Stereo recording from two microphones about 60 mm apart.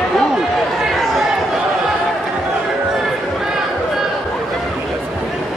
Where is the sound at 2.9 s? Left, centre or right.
Centre.